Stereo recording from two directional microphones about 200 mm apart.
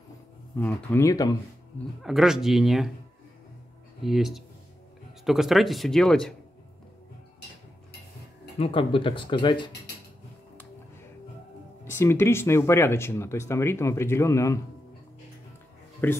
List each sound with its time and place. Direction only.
0.6 s speech: 10° left (ahead or behind)
2.0 s speech: centre (ahead or behind)
4.0 s speech: centre (ahead or behind)
8.5 s speech: 30° left (ahead or behind)
11.8 s speech: 10° left (ahead or behind)
16.0 s speech: 10° left (ahead or behind)